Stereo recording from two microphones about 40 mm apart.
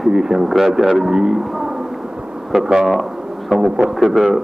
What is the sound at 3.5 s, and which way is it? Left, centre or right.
Speech, centre.